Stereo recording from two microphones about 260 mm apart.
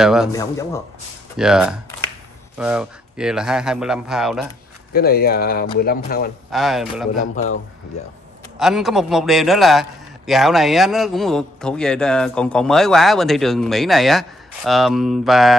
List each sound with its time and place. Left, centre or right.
0.0 s a man's voice: centre
0.3 s speech: centre
1.3 s a man's voice: centre
4.9 s speech: left
6.5 s a man's voice: centre
7.4 s speech: left
8.5 s a man's voice: centre